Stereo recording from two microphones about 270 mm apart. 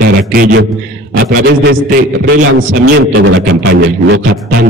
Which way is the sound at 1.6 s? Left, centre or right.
Right.